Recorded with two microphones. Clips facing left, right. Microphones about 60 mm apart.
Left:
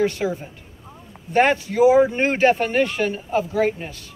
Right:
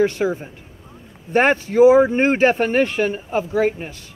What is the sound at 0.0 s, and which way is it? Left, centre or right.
Speech, right.